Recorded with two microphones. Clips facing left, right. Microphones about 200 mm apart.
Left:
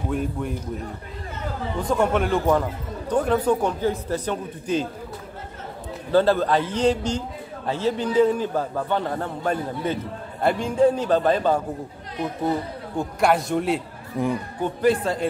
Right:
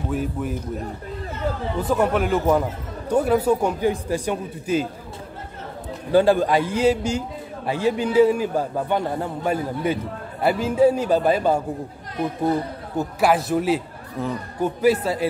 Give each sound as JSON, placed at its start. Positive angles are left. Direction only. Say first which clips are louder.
{"t": 0.1, "sound": "a man's voice", "louder": "right 1 dB", "side_deg": -5}
{"t": 1.8, "sound": "a man's voice", "louder": "even", "side_deg": -5}
{"t": 6.1, "sound": "a man's voice", "louder": "right 2 dB", "side_deg": -15}
{"t": 14.2, "sound": "speech", "louder": "left 3 dB", "side_deg": 15}
{"t": 14.6, "sound": "a man's voice", "louder": "right 2 dB", "side_deg": -5}